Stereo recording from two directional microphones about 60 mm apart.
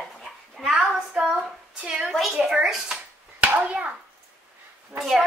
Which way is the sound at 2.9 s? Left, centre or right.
Centre.